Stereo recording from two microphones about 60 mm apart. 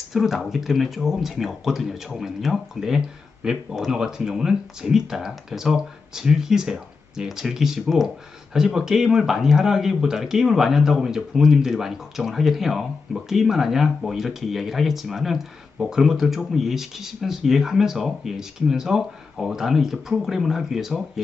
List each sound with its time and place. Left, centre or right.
0.1 s speech: centre